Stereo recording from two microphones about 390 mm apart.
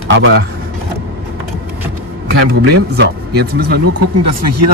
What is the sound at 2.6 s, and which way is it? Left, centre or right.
Speech, right.